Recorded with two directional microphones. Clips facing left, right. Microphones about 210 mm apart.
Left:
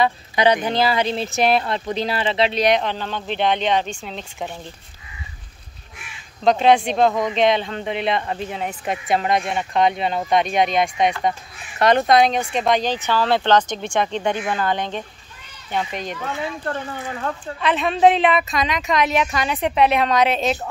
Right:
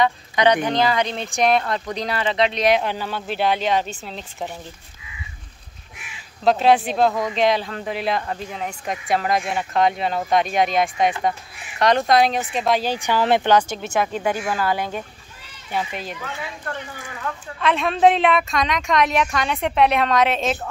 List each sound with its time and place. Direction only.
0.0 s speech: 30° left (ahead or behind)
1.0 s speech: 5° left (ahead or behind)
1.6 s speech: 25° left (ahead or behind)
2.5 s speech: centre (ahead or behind)
6.4 s speech: 5° right (ahead or behind)
17.6 s speech: centre (ahead or behind)